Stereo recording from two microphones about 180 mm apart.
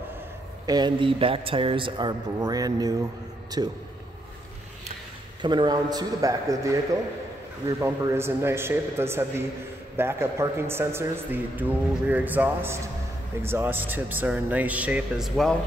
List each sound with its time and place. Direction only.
0.7 s a man's voice: 25° right (ahead or behind)
5.4 s a man's voice: 25° right (ahead or behind); by 15.5 s centre (ahead or behind)